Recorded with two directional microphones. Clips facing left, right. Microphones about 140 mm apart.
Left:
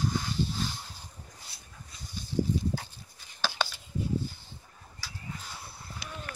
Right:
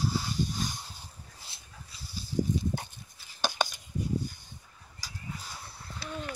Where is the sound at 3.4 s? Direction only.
15° right (ahead or behind).